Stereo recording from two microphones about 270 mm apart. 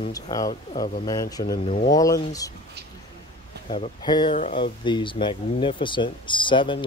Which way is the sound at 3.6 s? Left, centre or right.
Centre.